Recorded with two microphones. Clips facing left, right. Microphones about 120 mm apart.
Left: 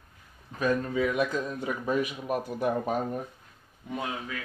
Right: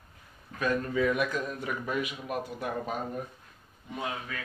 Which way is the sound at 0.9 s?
15° left (ahead or behind).